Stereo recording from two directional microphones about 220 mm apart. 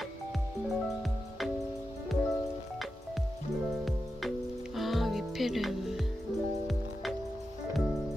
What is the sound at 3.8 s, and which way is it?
Music, centre (ahead or behind).